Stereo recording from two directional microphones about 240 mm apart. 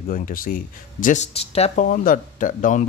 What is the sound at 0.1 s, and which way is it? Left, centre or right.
Speech, left.